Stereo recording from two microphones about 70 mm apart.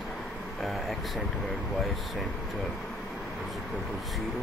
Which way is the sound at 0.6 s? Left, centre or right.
Centre.